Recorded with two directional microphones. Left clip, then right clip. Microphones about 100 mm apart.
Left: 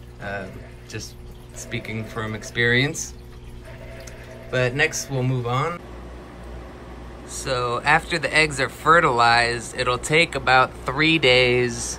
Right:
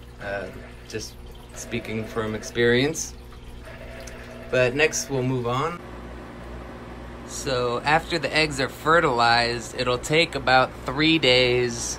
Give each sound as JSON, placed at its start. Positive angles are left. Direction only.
{"t": 0.2, "sound": "speech", "side_deg": -20}
{"t": 1.6, "sound": "speech", "side_deg": -30}
{"t": 4.5, "sound": "a man's voice", "side_deg": -30}
{"t": 7.4, "sound": "speech", "side_deg": -25}